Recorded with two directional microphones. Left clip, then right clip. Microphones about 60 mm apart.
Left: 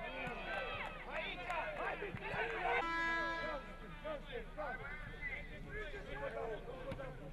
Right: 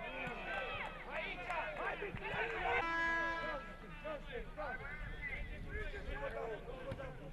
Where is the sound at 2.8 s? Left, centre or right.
Left.